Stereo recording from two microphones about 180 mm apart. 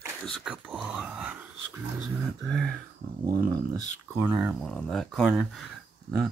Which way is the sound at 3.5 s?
20° right (ahead or behind).